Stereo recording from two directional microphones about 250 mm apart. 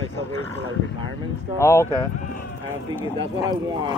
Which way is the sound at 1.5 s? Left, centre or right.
Centre.